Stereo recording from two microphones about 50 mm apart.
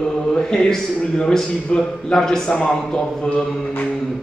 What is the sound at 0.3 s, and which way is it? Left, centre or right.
A man's voice, centre.